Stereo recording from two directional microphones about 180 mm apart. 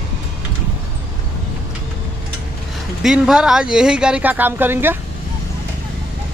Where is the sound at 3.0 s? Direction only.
5° right (ahead or behind).